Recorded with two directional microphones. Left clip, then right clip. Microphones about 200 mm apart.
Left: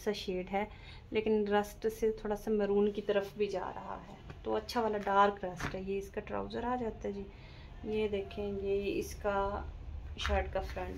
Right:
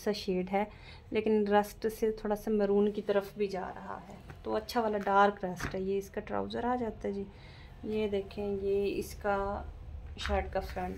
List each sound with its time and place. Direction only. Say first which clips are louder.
0.0 s speech: right 3 dB; 25° right (ahead or behind)